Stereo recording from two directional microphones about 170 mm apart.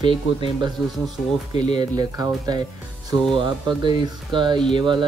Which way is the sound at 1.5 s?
40° left (ahead or behind).